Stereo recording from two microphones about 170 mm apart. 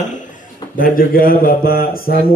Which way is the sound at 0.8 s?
55° left (ahead or behind).